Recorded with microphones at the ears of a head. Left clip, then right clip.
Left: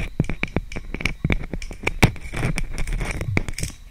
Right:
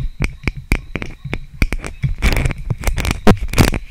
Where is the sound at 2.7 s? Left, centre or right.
Right.